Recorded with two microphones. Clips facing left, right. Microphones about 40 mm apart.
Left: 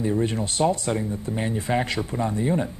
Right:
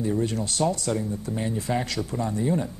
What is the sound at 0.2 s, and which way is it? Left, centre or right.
Speech, left.